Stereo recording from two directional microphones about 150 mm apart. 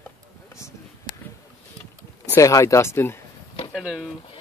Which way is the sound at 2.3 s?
20° left (ahead or behind).